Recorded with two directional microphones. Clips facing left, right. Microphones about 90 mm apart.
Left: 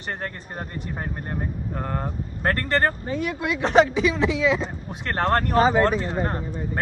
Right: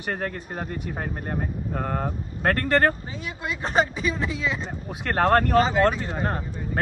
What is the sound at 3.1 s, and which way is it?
Speech, 55° left (ahead or behind).